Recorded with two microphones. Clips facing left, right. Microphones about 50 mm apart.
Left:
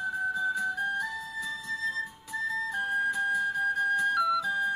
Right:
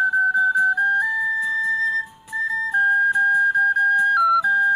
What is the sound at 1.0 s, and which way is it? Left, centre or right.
Flute, centre.